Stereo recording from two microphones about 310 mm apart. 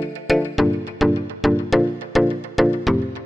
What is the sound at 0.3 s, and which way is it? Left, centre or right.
Music, centre.